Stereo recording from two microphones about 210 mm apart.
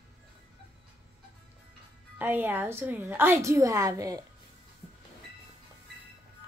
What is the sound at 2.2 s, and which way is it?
A woman's voice, 10° right (ahead or behind).